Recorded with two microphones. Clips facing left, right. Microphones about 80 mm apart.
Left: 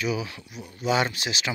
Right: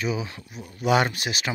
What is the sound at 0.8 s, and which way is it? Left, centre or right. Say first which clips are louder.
Speech: right 3 dB; right.